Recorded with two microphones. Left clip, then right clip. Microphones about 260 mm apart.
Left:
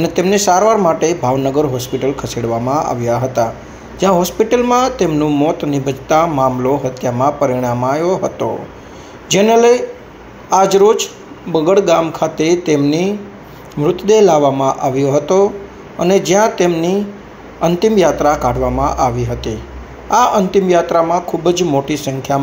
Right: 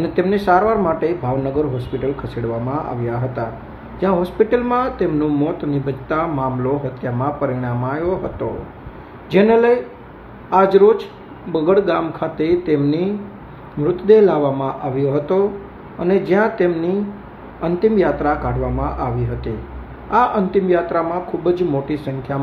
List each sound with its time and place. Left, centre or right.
0.0 s speech: centre